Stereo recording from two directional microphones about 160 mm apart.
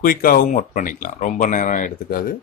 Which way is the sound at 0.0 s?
65° left (ahead or behind).